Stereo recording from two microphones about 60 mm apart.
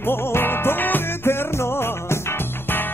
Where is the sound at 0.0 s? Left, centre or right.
Left.